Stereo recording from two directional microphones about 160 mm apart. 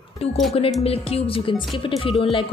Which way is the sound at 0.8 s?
40° left (ahead or behind).